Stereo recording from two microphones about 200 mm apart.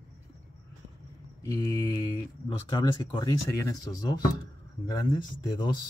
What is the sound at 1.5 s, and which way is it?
Speech, 20° left (ahead or behind).